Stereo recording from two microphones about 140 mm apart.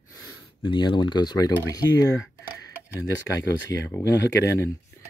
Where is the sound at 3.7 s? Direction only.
25° left (ahead or behind).